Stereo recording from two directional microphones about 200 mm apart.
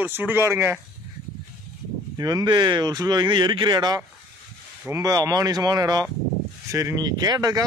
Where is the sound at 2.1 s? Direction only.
20° right (ahead or behind).